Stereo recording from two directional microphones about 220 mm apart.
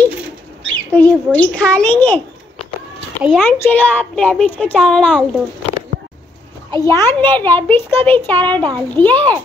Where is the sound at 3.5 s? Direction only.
10° left (ahead or behind).